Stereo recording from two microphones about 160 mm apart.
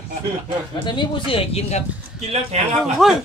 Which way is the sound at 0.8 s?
30° left (ahead or behind).